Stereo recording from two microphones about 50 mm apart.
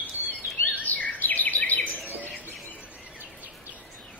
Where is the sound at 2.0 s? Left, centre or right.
Right.